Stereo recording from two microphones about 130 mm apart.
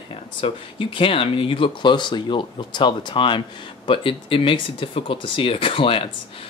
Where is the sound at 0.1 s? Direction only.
40° left (ahead or behind).